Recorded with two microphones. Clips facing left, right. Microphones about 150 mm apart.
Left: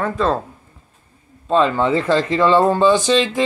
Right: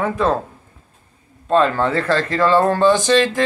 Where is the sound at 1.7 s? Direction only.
15° left (ahead or behind).